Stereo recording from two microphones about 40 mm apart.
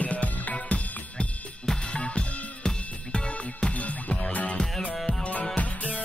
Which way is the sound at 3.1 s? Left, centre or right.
Left.